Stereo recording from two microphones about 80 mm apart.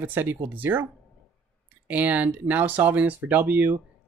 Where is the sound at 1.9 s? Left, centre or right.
Right.